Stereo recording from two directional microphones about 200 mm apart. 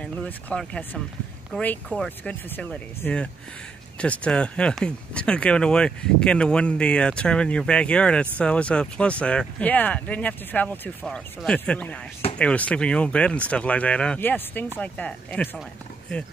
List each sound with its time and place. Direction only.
0.0 s speech: 5° left (ahead or behind)